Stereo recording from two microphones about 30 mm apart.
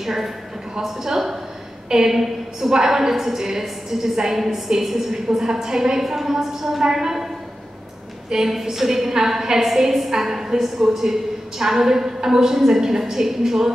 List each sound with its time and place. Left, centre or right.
0.0 s a woman's voice: centre
8.5 s a woman's voice: centre